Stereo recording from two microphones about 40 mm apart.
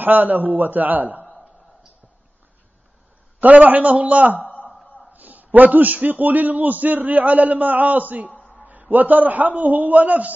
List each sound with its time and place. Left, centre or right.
0.0 s a man's voice: right
3.3 s a man's voice: right
4.4 s a sound: left
5.1 s a man's voice: right
8.3 s a sound: left
8.9 s a man's voice: right